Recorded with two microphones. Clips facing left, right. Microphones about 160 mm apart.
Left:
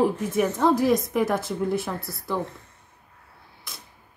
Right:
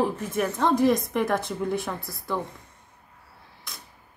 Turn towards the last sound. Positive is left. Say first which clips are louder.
# even
turn(degrees=0)  # may be behind; listen again after turning